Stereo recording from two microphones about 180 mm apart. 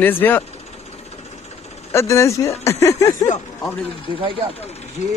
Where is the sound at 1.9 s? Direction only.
15° left (ahead or behind).